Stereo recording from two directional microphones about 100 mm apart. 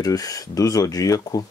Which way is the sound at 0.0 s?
40° left (ahead or behind).